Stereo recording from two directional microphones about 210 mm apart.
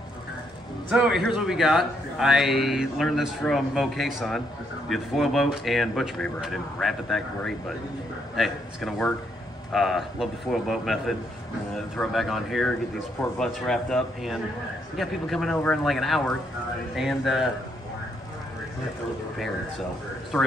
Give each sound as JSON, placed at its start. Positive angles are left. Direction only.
{"t": 0.8, "sound": "a man's voice", "side_deg": -5}